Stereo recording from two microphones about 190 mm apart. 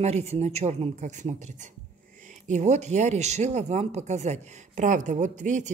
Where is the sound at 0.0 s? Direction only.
35° right (ahead or behind).